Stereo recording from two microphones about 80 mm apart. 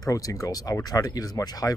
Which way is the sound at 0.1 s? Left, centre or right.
Left.